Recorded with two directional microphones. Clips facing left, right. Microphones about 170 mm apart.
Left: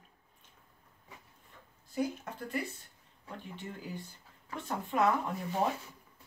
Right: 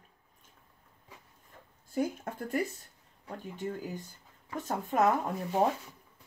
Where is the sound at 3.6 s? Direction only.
45° right (ahead or behind).